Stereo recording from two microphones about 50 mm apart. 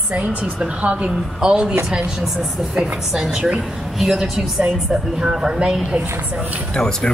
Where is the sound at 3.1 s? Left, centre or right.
Right.